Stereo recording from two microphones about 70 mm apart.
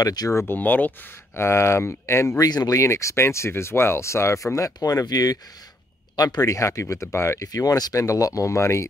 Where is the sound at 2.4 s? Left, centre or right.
Left.